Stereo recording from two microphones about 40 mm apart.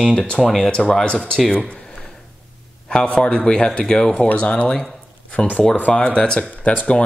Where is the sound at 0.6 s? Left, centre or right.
Left.